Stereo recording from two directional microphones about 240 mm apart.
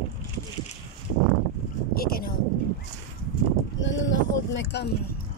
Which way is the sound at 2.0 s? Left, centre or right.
Left.